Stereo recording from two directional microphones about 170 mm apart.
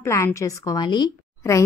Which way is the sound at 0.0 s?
15° left (ahead or behind).